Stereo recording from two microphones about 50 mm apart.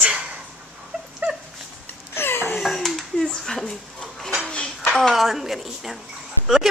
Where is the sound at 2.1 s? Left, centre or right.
Left.